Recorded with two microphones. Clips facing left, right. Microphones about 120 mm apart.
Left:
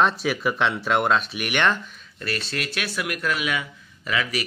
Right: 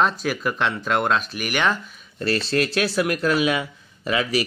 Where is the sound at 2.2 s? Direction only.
35° right (ahead or behind).